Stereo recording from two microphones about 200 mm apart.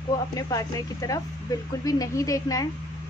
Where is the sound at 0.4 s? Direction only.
15° left (ahead or behind).